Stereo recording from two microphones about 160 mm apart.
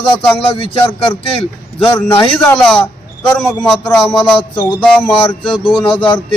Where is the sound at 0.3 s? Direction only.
30° left (ahead or behind).